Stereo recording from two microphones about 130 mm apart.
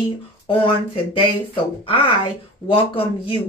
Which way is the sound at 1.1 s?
40° left (ahead or behind).